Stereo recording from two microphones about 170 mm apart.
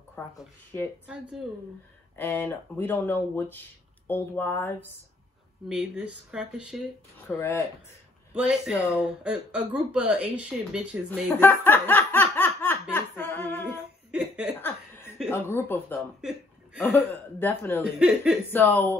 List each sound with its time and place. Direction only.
0.2 s speech: 15° left (ahead or behind)
1.0 s speech: 5° right (ahead or behind)
2.1 s speech: 10° left (ahead or behind)
5.7 s speech: 5° right (ahead or behind)
7.2 s speech: 15° left (ahead or behind)
8.4 s speech: 5° right (ahead or behind)
11.3 s laughter: 10° left (ahead or behind)
12.9 s a sound: 10° left (ahead or behind)
14.1 s a sound: 5° right (ahead or behind)
15.2 s speech: 15° left (ahead or behind)
16.2 s chuckle: 5° right (ahead or behind)
16.8 s speech: 10° left (ahead or behind)
17.9 s speech: 5° right (ahead or behind)
18.5 s speech: 10° left (ahead or behind)